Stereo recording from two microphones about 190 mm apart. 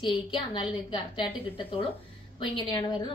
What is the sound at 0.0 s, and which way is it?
A woman's voice, 30° left (ahead or behind).